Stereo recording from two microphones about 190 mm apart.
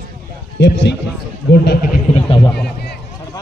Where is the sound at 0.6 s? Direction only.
65° left (ahead or behind).